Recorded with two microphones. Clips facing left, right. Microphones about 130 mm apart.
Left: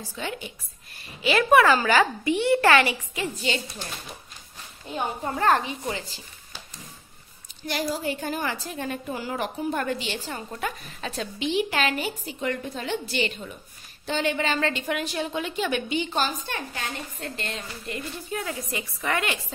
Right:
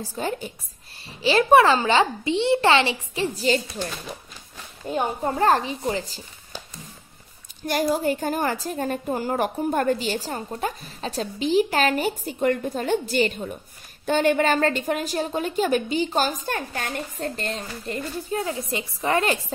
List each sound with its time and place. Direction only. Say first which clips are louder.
0.1 s a woman's voice: right 5 dB; 40° right (ahead or behind)
5.2 s a woman's voice: right 2 dB; 35° right (ahead or behind)
7.6 s a woman's voice: right 6 dB; 50° right (ahead or behind)